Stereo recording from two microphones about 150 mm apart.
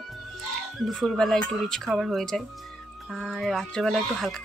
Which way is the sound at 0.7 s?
Centre (ahead or behind).